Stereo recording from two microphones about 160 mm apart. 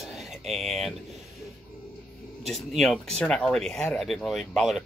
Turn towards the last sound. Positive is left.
turn(degrees=0)  # may be behind; listen again after turning